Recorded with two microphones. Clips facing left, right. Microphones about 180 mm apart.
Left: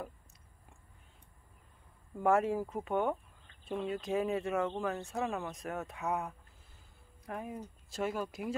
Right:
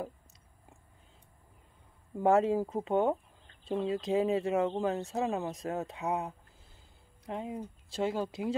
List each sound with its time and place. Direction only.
2.1 s speech: 25° right (ahead or behind)